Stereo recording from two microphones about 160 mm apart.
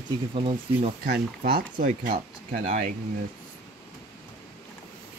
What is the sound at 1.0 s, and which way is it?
Speech, 85° right.